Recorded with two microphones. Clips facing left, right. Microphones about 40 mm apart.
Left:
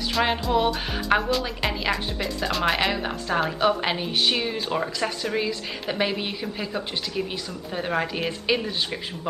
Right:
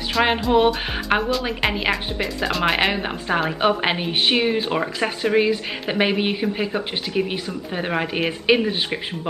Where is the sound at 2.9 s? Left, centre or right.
Right.